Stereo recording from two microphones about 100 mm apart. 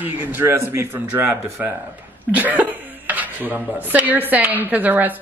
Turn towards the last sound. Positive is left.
turn(degrees=-15)  # may be behind; listen again after turning